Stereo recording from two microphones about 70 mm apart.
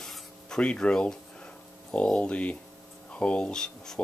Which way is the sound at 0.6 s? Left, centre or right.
Centre.